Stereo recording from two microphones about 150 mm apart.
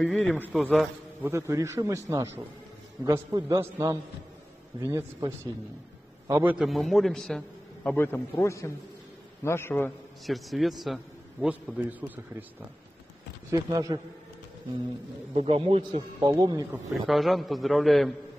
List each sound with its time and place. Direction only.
0.0 s a man's voice: centre (ahead or behind)
1.2 s a man's voice: 20° right (ahead or behind)
6.6 s a man's voice: centre (ahead or behind)
10.2 s a man's voice: centre (ahead or behind)
11.4 s a man's voice: 10° right (ahead or behind)
13.5 s a man's voice: 25° right (ahead or behind)
15.3 s speech: 40° right (ahead or behind)
16.3 s a man's voice: 25° right (ahead or behind)
17.1 s a man's voice: centre (ahead or behind)